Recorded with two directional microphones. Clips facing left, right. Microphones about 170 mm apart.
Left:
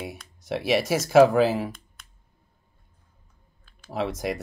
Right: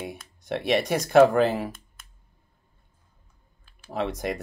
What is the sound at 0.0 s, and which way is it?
Speech, centre (ahead or behind).